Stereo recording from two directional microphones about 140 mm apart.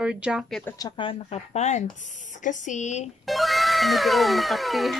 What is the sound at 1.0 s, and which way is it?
Speech, 50° left (ahead or behind).